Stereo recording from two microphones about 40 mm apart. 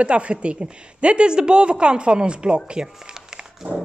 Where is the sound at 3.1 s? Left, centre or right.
Right.